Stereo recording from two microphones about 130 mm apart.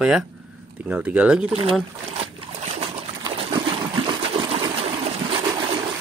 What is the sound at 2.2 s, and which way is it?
Trickle, 45° right (ahead or behind).